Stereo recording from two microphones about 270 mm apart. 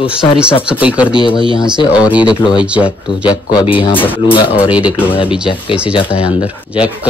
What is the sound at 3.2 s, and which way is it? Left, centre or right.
Speech, centre.